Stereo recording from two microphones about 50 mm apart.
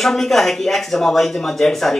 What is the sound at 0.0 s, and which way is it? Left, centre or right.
Speech, centre.